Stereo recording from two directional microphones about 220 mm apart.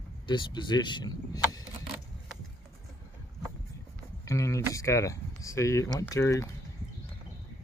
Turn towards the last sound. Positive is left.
turn(degrees=15)  # may be behind; listen again after turning